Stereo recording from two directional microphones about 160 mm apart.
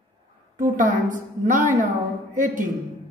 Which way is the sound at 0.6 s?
50° right (ahead or behind).